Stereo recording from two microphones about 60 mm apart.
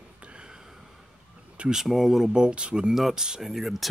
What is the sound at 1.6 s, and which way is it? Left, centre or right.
Speech, centre.